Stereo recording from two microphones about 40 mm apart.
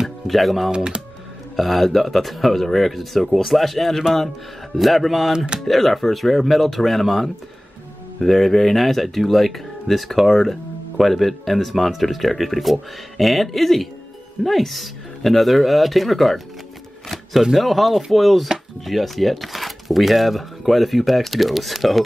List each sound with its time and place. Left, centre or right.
0.3 s speech: centre
0.7 s speech: right
1.6 s speech: centre
17.4 s speech: centre